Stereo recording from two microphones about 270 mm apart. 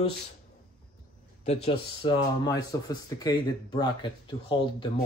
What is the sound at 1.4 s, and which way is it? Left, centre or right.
Speech, left.